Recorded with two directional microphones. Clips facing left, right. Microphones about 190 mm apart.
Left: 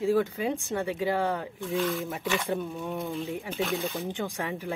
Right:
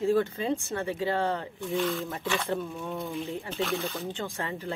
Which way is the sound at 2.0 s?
10° left (ahead or behind).